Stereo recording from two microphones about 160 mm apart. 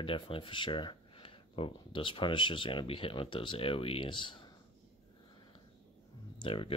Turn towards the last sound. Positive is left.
turn(degrees=35)  # may be behind; listen again after turning